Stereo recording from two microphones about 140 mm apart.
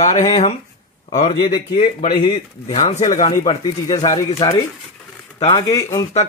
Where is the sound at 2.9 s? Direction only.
60° left (ahead or behind).